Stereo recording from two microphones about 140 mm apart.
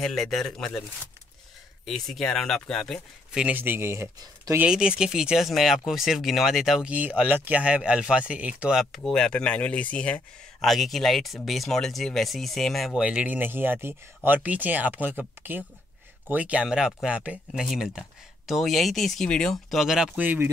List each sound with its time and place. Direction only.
0.0 s speech: centre (ahead or behind)
1.9 s speech: centre (ahead or behind)
3.4 s speech: 15° right (ahead or behind)
4.6 s speech: 5° right (ahead or behind)